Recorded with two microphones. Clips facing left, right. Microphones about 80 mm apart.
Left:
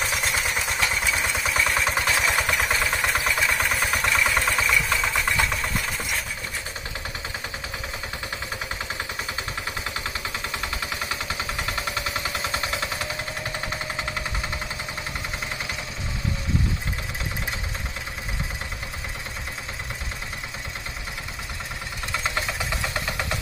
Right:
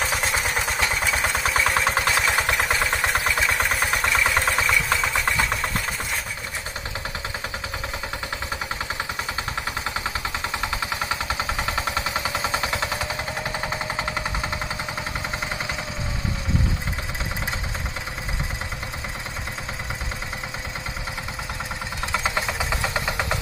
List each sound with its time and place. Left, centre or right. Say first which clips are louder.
0.0 s vehicle: right 2 dB; right
1.2 s a sound: right 2 dB; right
2.2 s vehicle: right 1 dB; right
11.5 s machine gun: right 3 dB; centre
22.2 s vehicle: right 2 dB; centre